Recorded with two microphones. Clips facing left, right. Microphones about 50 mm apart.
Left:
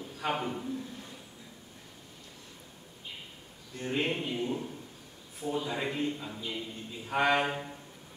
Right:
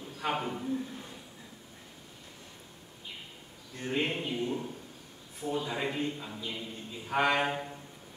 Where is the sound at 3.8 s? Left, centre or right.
Centre.